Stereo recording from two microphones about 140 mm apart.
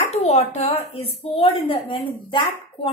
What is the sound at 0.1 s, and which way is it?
A woman's voice, 50° left (ahead or behind).